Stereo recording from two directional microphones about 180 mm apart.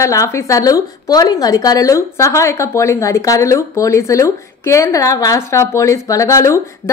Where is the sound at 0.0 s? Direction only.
15° left (ahead or behind).